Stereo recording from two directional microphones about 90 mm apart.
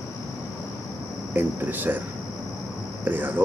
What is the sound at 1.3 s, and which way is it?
Speech, 20° right (ahead or behind).